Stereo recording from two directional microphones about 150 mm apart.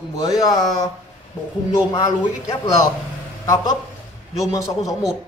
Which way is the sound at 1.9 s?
25° left (ahead or behind).